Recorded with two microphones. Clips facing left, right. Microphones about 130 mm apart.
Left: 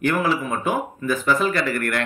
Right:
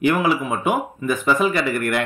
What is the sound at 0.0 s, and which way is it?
Speech, 5° right (ahead or behind).